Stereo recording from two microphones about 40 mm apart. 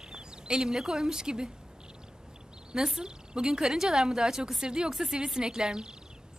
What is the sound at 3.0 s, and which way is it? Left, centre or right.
Speech, centre.